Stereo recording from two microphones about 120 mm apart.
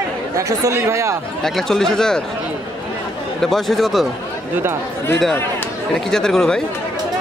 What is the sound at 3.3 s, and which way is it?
Speech, centre (ahead or behind).